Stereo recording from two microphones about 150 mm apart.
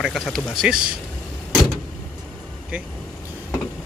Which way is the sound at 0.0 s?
Centre (ahead or behind).